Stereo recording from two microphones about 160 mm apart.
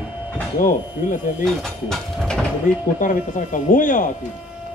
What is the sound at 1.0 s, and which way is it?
Speech, 55° left (ahead or behind).